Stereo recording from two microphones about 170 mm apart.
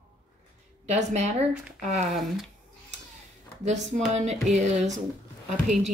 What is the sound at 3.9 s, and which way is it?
Speech, 45° right (ahead or behind).